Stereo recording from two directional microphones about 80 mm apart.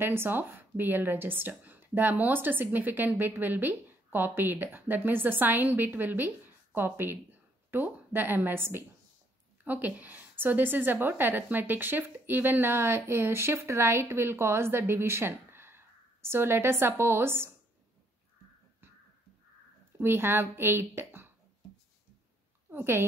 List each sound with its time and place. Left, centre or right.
0.0 s speech: right
20.0 s speech: right
22.7 s a woman's voice: right